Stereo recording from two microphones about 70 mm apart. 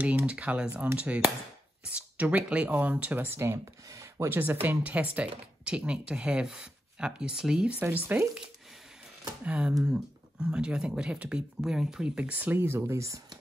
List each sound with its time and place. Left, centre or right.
0.0 s speech: centre; by 3.6 s right
3.9 s a sound: right
4.3 s speech: right; by 7.7 s centre
8.1 s speech: right
9.4 s speech: centre
12.3 s speech: right
12.5 s speech: right